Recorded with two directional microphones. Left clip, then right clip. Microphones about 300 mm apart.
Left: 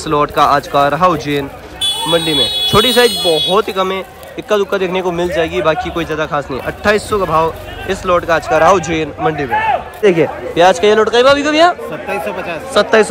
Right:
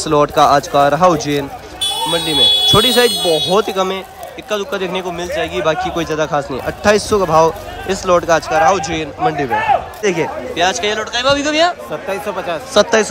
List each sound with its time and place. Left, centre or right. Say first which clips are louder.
0.0 s a man's voice: even; centre
3.3 s a man's voice: left 2 dB; right
3.5 s a man's voice: left 1 dB; centre
9.5 s a man's voice: even; right
10.0 s a man's voice: left 5 dB; centre